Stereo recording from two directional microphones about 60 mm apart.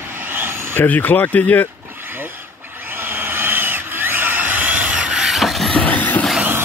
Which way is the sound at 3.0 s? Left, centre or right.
Right.